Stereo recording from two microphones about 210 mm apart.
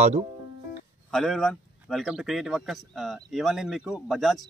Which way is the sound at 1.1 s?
Centre (ahead or behind).